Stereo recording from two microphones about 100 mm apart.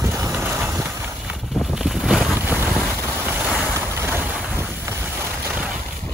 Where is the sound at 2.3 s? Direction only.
20° right (ahead or behind).